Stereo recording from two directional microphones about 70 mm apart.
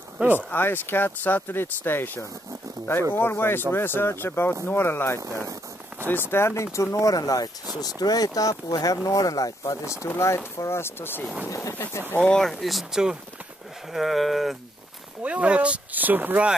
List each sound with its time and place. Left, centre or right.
0.2 s speech: right
0.5 s speech: left
10.0 s speech: left
12.2 s speech: centre
12.5 s speech: centre
15.2 s speech: centre